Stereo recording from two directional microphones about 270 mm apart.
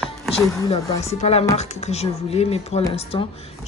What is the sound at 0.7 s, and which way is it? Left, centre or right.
Speech, left.